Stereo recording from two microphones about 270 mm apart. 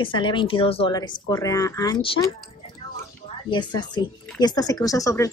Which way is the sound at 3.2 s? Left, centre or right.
Centre.